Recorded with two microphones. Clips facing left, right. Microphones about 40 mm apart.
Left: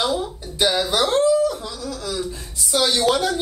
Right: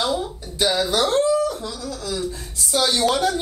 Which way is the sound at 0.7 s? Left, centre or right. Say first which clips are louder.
Right 1 dB; left.